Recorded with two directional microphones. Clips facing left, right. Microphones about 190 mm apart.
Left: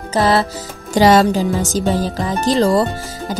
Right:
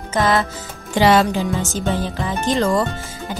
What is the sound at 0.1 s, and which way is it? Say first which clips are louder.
Speech: left 3 dB; 35° left (ahead or behind).